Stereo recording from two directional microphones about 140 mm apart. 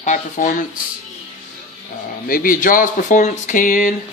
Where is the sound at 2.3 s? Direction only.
85° left.